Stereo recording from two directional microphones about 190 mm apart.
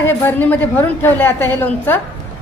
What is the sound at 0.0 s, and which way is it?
A woman's voice, 10° left (ahead or behind).